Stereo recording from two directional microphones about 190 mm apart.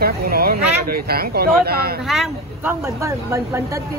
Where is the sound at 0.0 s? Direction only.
55° right (ahead or behind).